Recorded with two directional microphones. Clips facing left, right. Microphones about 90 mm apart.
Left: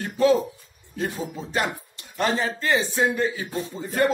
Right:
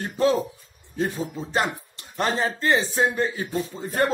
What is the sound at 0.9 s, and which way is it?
Speech, 30° right (ahead or behind).